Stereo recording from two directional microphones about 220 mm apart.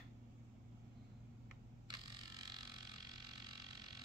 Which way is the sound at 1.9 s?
20° right (ahead or behind).